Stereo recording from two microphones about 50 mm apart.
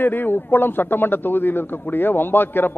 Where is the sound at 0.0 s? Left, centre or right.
Left.